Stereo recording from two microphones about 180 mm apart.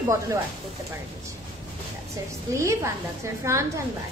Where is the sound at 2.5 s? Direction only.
15° right (ahead or behind).